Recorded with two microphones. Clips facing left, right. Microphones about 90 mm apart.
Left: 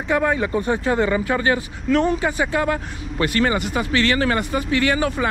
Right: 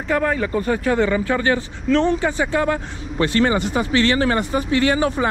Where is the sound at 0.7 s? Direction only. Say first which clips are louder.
Right 2 dB; 30° left (ahead or behind).